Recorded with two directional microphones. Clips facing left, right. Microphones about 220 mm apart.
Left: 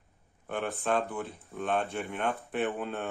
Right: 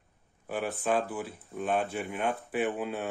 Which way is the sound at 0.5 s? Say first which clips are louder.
Right 1 dB; 5° right (ahead or behind).